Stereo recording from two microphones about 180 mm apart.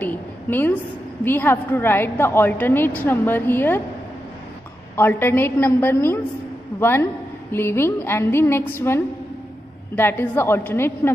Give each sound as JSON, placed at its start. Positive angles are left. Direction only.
{"t": 0.0, "sound": "a sound", "side_deg": 10}
{"t": 1.2, "sound": "a woman's voice", "side_deg": 10}
{"t": 4.9, "sound": "a woman's voice", "side_deg": 10}